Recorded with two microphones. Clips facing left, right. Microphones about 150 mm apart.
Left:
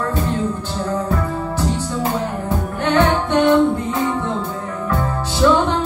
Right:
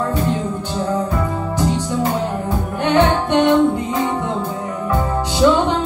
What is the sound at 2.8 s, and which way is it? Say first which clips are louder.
Music: right 1 dB; 15° right (ahead or behind).